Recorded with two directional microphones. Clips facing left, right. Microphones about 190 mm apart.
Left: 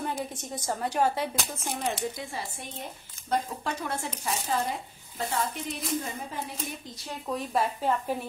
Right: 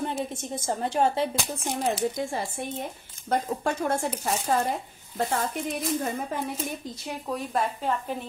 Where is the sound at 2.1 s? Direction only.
50° right (ahead or behind).